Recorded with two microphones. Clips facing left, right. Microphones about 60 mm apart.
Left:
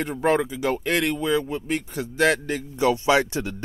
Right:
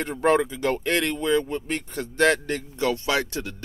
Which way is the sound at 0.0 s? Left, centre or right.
Centre.